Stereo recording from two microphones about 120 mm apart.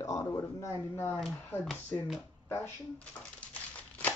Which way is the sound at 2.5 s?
15° left (ahead or behind).